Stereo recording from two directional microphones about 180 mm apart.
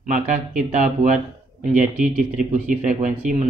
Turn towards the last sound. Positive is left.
turn(degrees=-45)  # may be behind; listen again after turning